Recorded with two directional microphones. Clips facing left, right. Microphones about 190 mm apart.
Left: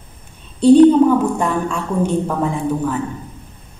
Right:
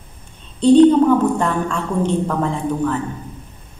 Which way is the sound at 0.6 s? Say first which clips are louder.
Left 2 dB; 10° left (ahead or behind).